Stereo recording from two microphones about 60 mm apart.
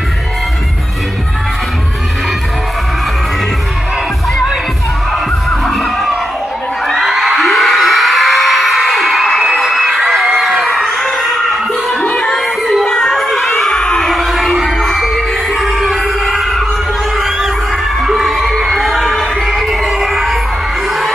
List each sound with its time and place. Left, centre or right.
5.5 s music: centre
6.9 s crowd: centre
12.0 s music: centre
12.3 s music: centre
12.8 s crowd: centre
14.1 s music: centre
18.0 s crowd: centre